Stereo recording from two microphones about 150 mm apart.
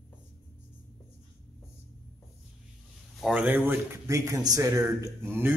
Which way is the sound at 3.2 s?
10° right (ahead or behind).